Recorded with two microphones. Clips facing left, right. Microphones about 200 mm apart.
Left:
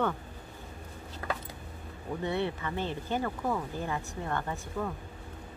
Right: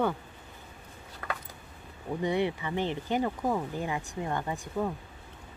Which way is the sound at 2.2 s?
15° right (ahead or behind).